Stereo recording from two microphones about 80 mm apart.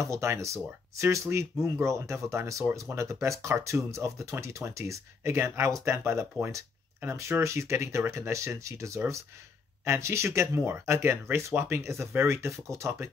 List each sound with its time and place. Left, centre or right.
0.0 s speech: right